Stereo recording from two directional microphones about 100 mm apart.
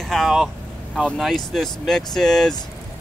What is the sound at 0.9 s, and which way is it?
Speech, 5° left (ahead or behind).